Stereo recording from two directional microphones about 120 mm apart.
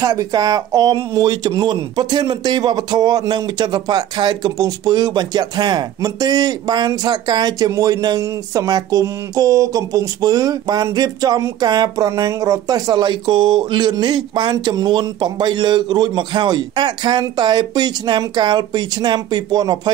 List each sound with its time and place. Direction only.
0.0 s speech: 30° right (ahead or behind)